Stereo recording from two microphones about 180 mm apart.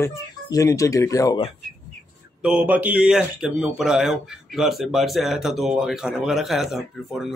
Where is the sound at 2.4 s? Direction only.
5° right (ahead or behind).